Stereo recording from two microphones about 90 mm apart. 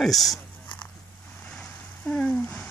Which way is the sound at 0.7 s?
15° left (ahead or behind).